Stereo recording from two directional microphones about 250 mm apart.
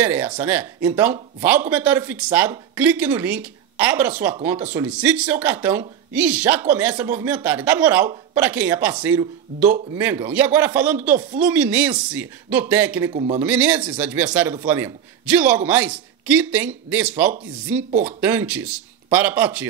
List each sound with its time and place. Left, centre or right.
0.0 s speech: centre
9.9 s speech: centre
13.1 s a man's voice: right
13.4 s a man's voice: centre